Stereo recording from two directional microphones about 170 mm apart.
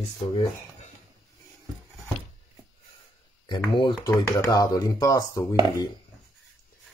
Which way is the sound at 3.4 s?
25° left (ahead or behind).